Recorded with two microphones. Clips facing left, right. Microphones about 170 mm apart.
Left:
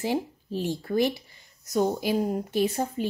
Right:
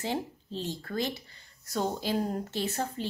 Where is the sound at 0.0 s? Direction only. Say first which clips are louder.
Left 5 dB; 15° left (ahead or behind).